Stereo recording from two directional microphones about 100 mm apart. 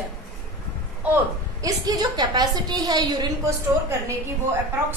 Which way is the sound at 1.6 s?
40° right (ahead or behind).